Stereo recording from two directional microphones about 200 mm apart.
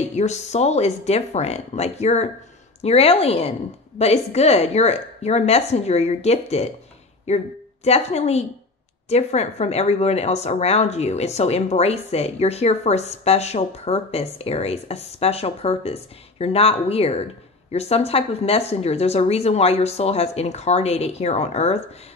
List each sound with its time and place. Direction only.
0.1 s a woman's voice: 35° left (ahead or behind)